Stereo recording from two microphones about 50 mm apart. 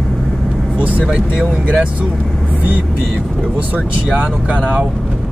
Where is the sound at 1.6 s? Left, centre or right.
Right.